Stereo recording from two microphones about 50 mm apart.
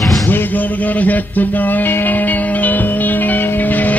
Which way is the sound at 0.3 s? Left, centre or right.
Left.